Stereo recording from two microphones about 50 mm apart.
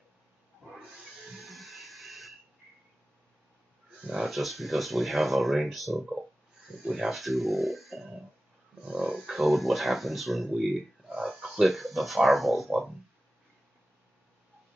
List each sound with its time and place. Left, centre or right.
1.4 s music: centre
4.1 s speech: centre
6.8 s speech: centre
7.2 s speech: centre
8.8 s speech: centre
9.3 s speech: centre